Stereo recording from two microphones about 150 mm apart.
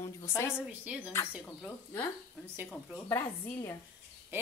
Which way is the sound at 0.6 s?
10° right (ahead or behind).